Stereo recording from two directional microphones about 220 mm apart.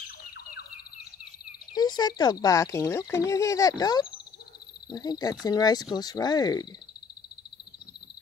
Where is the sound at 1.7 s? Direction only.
20° left (ahead or behind).